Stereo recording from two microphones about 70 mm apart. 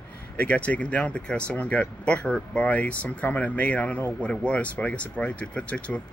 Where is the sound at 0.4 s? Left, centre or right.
Centre.